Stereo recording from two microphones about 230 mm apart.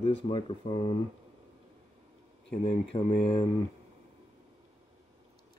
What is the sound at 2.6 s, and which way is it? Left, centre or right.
Speech, left.